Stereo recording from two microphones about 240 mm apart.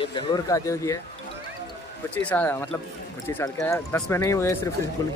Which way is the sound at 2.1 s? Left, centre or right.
Centre.